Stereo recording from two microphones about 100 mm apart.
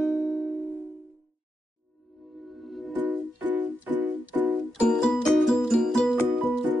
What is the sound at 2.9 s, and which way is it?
Music, 15° right (ahead or behind).